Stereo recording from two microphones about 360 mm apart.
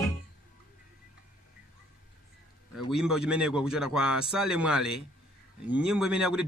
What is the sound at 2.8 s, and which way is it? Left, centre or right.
A man's voice, centre.